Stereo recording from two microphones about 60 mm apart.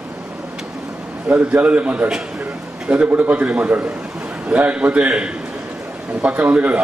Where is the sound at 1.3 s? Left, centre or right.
Right.